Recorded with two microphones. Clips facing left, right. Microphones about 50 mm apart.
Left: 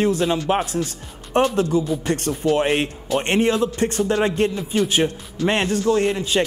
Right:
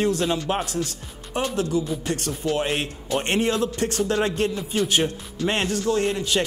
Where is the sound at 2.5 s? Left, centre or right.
Left.